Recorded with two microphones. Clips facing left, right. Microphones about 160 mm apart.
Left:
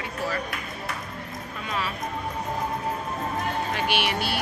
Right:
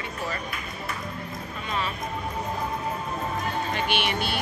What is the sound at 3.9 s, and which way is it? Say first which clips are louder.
Speech: left 1 dB; 5° left (ahead or behind).